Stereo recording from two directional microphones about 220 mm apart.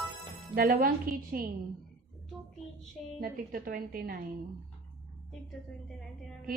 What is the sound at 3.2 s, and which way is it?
A woman's voice, 40° right (ahead or behind).